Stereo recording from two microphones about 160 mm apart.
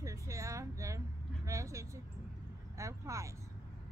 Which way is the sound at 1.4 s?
20° right (ahead or behind).